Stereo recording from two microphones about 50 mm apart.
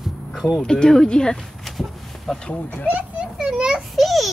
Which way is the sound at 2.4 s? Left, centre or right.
Left.